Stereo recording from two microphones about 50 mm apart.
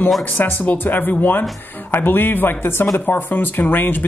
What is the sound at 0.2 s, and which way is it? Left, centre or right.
A man's voice, left.